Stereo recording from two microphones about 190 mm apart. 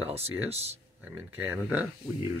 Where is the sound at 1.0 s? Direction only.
10° right (ahead or behind).